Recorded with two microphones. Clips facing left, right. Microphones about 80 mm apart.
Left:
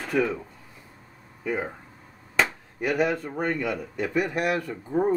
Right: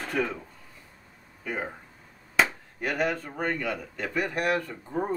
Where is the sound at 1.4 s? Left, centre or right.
Centre.